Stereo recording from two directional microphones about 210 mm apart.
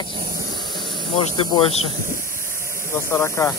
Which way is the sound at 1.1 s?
20° left (ahead or behind).